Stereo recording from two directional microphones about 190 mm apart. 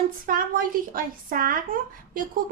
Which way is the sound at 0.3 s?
50° right (ahead or behind).